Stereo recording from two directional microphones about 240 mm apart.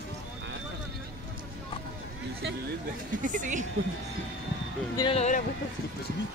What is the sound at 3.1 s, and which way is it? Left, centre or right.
Speech, right.